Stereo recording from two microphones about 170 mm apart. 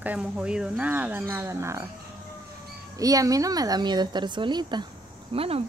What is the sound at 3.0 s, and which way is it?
A woman's voice, 20° right (ahead or behind).